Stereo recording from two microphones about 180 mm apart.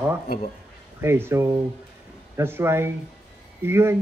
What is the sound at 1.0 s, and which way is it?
Speech, 15° right (ahead or behind).